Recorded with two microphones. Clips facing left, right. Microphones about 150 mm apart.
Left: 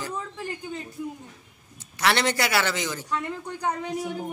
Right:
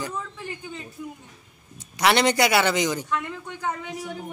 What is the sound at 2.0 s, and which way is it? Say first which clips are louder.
A man's voice: right 4 dB; 15° right (ahead or behind).